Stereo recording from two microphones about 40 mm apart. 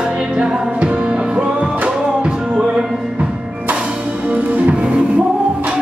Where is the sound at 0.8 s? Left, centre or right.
Right.